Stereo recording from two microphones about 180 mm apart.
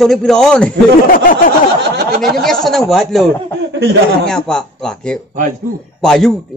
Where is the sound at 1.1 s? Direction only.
50° left (ahead or behind).